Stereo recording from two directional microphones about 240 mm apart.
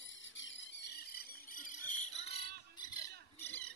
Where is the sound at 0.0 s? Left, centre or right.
Left.